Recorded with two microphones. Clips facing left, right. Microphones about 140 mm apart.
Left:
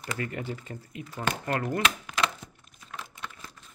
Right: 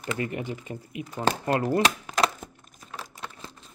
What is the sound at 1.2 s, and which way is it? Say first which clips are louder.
Speech: right 5 dB; 35° right (ahead or behind).